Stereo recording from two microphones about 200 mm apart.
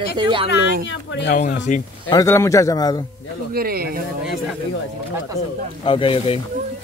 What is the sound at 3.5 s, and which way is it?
Speech, 50° right (ahead or behind).